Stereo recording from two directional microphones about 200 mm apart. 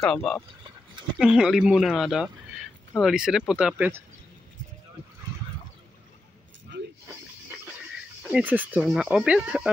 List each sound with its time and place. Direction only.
0.0 s speech: 5° left (ahead or behind)
6.7 s keys jangling: 60° right (ahead or behind)
8.2 s speech: 5° right (ahead or behind)